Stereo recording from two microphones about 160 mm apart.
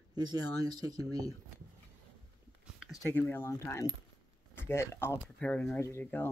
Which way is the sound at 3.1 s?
10° left (ahead or behind).